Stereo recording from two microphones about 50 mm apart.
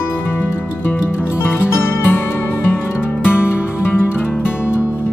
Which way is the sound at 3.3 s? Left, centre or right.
Left.